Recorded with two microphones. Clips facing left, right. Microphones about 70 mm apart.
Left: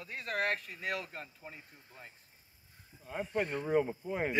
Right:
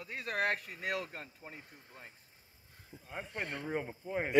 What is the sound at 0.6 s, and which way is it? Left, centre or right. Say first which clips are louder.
Speech: right 1 dB; right.